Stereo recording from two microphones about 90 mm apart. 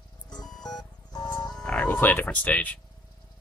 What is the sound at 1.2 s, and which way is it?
Music, 50° left (ahead or behind).